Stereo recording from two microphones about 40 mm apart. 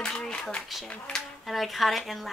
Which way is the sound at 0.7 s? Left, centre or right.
Centre.